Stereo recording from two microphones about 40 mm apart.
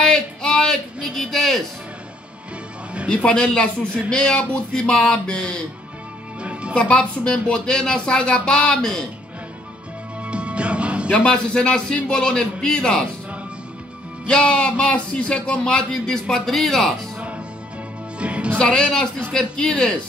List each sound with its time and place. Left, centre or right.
0.0 s a sound: centre
1.0 s speech: centre
3.3 s speech: left
6.4 s music: right
6.7 s a woman's voice: left
7.0 s speech: left
10.2 s music: right
11.2 s speech: left
14.2 s speech: left; by 16.9 s centre
18.2 s speech: right
18.6 s speech: left